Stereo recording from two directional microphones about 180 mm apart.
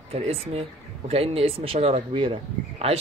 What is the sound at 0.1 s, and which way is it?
Speech, 35° right (ahead or behind).